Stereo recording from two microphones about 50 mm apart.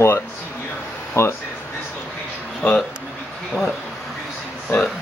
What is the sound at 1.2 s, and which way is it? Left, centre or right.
Speech, left.